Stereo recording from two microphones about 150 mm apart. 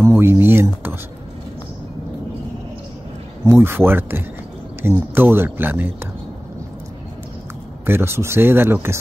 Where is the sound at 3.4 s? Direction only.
15° right (ahead or behind).